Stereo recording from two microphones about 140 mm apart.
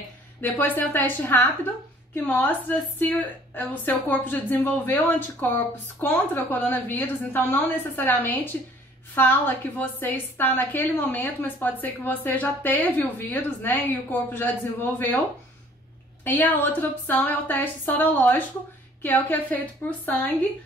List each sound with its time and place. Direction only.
0.4 s a woman's voice: 15° left (ahead or behind)
16.3 s a woman's voice: 15° left (ahead or behind)